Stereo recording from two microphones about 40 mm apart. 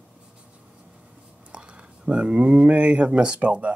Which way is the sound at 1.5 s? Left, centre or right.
Right.